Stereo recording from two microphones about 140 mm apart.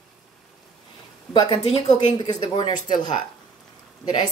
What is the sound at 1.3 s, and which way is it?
Speech, 40° left (ahead or behind).